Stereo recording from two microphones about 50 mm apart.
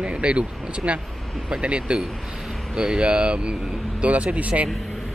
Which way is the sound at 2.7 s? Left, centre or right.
Centre.